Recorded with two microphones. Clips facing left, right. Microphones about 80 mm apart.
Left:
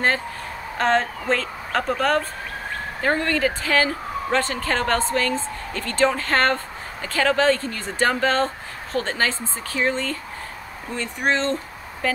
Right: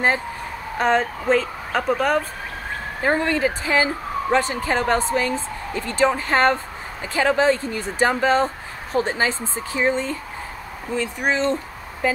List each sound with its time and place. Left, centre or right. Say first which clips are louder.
0.7 s speech: right 1 dB; centre